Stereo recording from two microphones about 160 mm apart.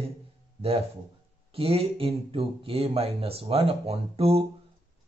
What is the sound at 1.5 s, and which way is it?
Speech, 35° right (ahead or behind).